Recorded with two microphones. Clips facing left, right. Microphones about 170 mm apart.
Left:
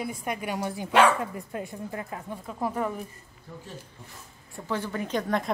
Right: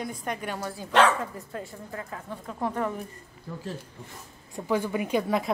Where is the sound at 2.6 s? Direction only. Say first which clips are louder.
Even; 5° left (ahead or behind).